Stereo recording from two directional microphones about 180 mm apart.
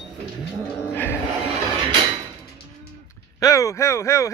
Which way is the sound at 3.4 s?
20° left (ahead or behind).